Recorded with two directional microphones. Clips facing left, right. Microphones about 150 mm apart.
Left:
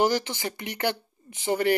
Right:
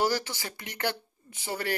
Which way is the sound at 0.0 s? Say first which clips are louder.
Left 4 dB; 20° left (ahead or behind).